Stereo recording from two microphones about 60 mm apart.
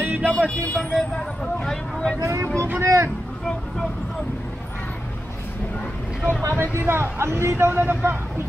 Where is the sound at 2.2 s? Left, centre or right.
Right.